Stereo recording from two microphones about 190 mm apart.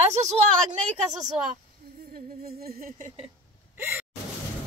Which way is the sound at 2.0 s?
55° right (ahead or behind).